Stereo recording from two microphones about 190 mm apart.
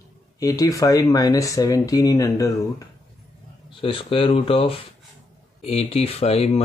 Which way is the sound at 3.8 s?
30° left (ahead or behind).